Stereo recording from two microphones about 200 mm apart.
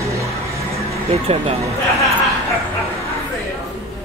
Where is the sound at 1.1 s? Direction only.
30° right (ahead or behind).